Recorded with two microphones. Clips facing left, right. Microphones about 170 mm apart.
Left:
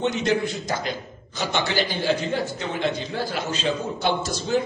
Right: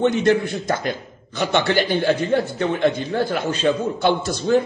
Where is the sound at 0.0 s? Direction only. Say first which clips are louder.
Right 5 dB; 55° right (ahead or behind).